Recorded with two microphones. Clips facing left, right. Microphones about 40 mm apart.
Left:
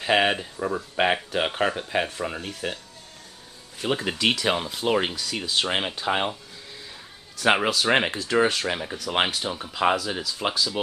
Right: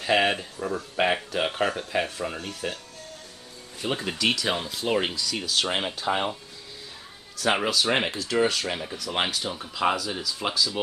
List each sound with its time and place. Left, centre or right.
0.0 s speech: centre
3.8 s speech: centre
4.2 s speech: left
4.8 s speech: centre
5.1 s speech: left
5.4 s speech: left
7.3 s speech: left